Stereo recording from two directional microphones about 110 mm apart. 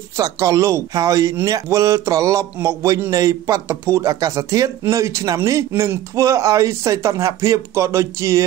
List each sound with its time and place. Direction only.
0.2 s speech: 30° right (ahead or behind)